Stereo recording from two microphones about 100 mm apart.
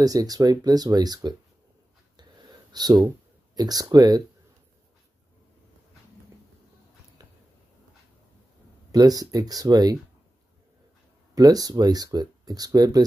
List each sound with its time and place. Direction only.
0.0 s speech: 40° right (ahead or behind)
2.7 s speech: 45° right (ahead or behind)
8.9 s speech: 40° right (ahead or behind)
11.3 s speech: 40° right (ahead or behind)